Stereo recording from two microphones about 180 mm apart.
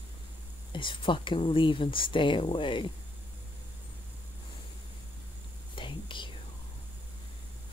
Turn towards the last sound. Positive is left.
turn(degrees=25)  # may be behind; listen again after turning